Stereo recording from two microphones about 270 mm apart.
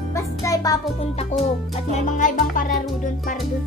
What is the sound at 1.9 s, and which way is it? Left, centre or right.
Music, left.